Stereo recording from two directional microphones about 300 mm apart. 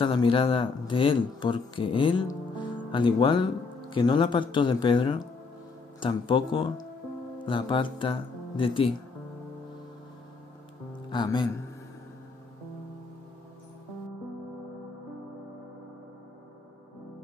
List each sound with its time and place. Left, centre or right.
0.0 s speech: centre
11.1 s speech: centre